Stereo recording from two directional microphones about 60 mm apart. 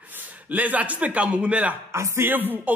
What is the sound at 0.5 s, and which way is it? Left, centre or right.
A man's voice, right.